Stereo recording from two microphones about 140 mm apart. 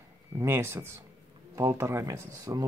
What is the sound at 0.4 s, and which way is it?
Speech, 20° right (ahead or behind).